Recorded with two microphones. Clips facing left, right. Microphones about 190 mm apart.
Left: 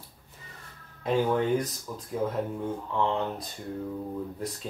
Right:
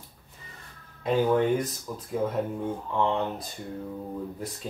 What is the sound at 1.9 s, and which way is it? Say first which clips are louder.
Speech: right 2 dB; 5° right (ahead or behind).